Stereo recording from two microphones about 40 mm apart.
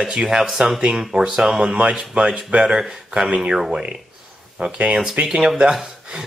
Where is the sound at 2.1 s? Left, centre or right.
Right.